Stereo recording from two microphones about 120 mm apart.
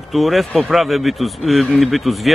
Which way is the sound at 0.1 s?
Centre (ahead or behind).